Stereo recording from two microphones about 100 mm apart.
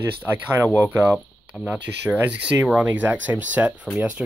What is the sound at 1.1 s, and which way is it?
Speech, 5° right (ahead or behind).